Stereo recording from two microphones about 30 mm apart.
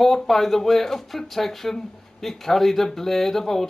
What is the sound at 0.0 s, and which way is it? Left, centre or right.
Speech, centre.